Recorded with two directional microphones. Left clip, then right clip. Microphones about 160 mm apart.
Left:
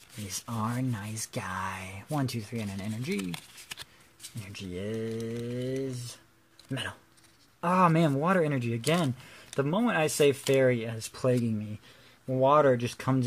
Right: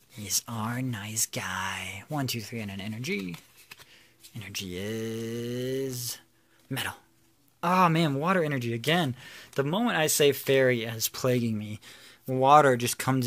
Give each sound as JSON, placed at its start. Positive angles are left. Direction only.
{"t": 0.3, "sound": "speech", "side_deg": 0}
{"t": 3.3, "sound": "a sound", "side_deg": 25}
{"t": 4.4, "sound": "speech", "side_deg": -10}
{"t": 7.6, "sound": "speech", "side_deg": -5}
{"t": 12.3, "sound": "speech", "side_deg": -25}